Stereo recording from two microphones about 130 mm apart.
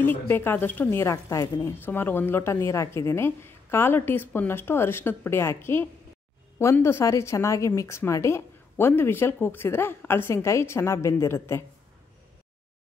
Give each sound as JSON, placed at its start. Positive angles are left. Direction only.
{"t": 0.0, "sound": "a woman's voice", "side_deg": 15}